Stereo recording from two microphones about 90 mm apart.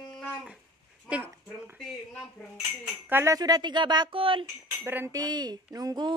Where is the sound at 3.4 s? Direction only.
50° right (ahead or behind).